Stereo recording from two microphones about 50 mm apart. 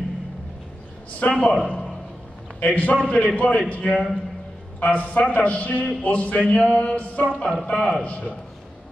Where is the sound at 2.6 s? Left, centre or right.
Left.